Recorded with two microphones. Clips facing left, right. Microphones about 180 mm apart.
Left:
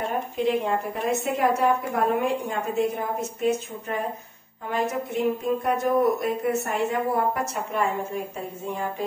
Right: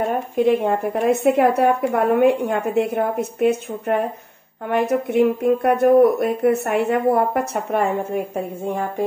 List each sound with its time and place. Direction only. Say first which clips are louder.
0.1 s speech: right 5 dB; 55° right (ahead or behind)